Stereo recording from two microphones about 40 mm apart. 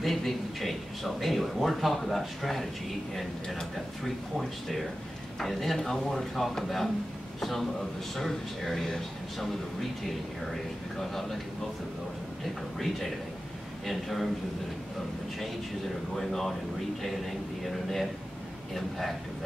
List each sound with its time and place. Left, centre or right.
0.0 s a man's voice: centre
6.1 s a man's voice: centre
12.7 s a man's voice: centre
16.2 s a man's voice: centre